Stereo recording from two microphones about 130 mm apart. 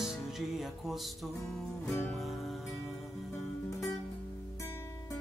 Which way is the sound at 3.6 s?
25° left (ahead or behind).